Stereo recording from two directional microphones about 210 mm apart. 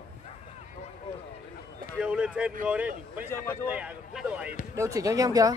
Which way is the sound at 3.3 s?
10° left (ahead or behind).